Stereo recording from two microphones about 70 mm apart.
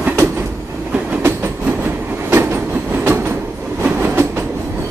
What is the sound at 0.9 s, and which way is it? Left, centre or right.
Train, right.